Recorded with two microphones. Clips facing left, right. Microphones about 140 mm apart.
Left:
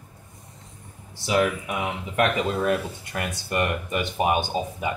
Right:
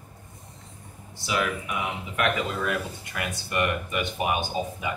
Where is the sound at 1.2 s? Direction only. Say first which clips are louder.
Left 5 dB; 35° left (ahead or behind).